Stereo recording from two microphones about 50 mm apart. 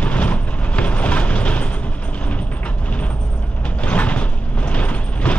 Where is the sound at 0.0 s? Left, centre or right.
Left.